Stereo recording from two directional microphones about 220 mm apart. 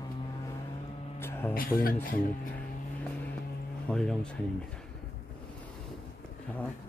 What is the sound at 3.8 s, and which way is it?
Speech, 5° left (ahead or behind).